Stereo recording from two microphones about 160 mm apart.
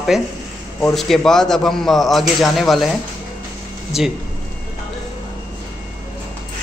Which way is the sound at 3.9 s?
Centre (ahead or behind).